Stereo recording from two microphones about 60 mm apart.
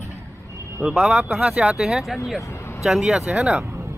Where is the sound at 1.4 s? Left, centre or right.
Centre.